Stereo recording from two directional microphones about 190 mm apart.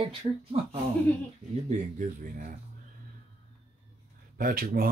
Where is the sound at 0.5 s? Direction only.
35° right (ahead or behind).